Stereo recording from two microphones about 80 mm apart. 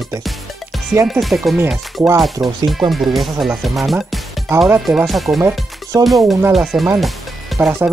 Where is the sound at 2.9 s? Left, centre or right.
Centre.